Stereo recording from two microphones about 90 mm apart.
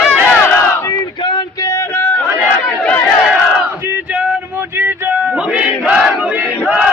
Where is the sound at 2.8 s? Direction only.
15° left (ahead or behind).